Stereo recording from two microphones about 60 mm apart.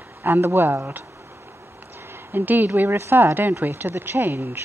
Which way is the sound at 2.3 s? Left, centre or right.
Right.